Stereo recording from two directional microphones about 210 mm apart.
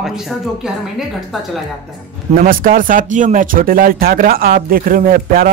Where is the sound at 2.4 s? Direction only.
40° right (ahead or behind).